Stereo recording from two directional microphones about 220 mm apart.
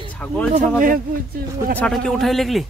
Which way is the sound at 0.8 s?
40° right (ahead or behind).